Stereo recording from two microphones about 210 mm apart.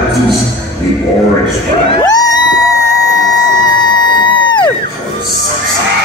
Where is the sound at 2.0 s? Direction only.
15° left (ahead or behind).